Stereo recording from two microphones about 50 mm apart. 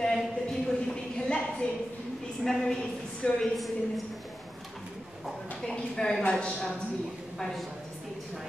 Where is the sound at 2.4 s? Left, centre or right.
Centre.